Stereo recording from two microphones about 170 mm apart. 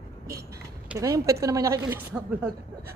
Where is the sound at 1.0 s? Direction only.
20° right (ahead or behind).